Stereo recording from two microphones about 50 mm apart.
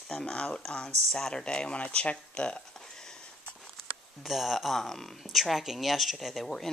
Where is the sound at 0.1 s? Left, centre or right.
Left.